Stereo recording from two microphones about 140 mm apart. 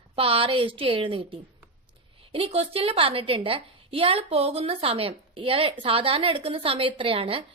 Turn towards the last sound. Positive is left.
turn(degrees=-40)  # may be behind; listen again after turning